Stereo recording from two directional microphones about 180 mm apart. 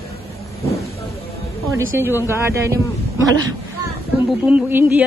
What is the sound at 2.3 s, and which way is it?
Speech, 15° right (ahead or behind).